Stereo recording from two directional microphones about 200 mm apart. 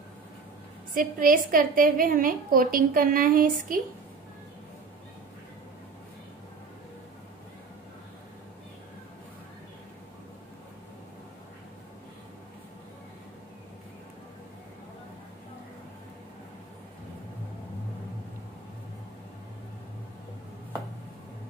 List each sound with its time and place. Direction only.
0.9 s a woman's voice: 45° right (ahead or behind)